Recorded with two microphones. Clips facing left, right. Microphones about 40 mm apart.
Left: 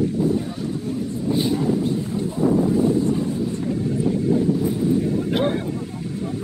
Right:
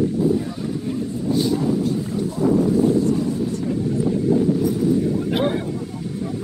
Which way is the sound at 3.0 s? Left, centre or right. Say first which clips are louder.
Right 1 dB; left.